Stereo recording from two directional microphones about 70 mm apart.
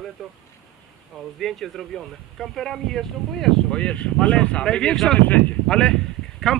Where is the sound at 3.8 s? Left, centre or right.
Centre.